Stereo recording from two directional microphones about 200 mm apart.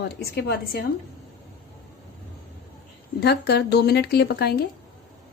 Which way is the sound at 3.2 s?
55° left (ahead or behind).